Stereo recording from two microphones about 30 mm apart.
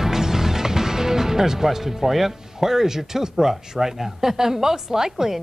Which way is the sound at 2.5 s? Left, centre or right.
Centre.